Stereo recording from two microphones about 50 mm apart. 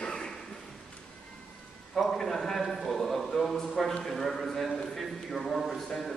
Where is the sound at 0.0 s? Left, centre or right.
Centre.